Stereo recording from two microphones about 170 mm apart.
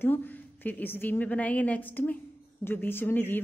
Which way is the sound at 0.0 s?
10° left (ahead or behind).